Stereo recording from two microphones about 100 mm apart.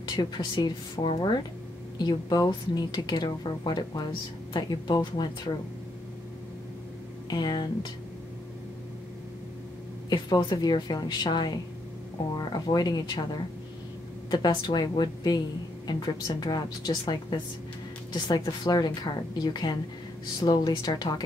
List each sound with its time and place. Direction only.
0.1 s speech: 45° left (ahead or behind)
7.2 s speech: 45° left (ahead or behind)
10.0 s speech: 45° left (ahead or behind)
18.1 s speech: 50° left (ahead or behind)